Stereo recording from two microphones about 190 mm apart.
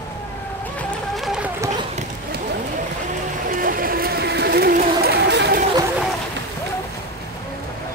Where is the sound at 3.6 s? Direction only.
50° right (ahead or behind).